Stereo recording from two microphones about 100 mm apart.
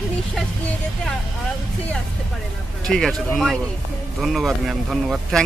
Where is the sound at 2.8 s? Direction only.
5° left (ahead or behind).